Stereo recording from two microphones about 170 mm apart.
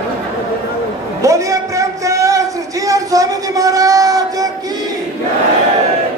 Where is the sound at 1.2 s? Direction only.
20° right (ahead or behind).